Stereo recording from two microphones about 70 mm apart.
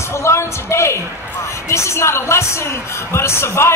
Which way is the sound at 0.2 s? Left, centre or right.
Left.